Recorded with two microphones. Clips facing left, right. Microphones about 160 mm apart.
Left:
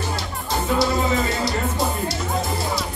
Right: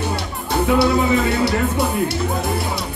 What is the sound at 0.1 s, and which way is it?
Music, 60° right (ahead or behind).